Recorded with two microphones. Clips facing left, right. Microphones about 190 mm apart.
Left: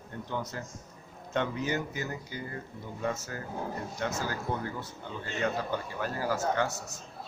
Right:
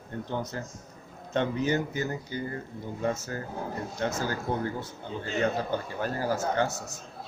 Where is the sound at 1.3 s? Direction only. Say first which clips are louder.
Right 4 dB; 25° right (ahead or behind).